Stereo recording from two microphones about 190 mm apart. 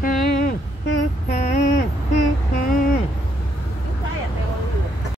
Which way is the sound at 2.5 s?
50° left (ahead or behind).